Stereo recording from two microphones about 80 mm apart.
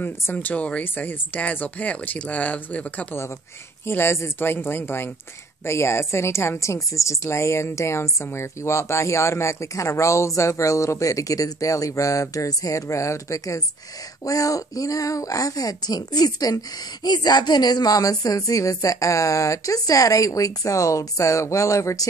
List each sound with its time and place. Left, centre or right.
0.0 s speech: left
3.8 s a woman's voice: left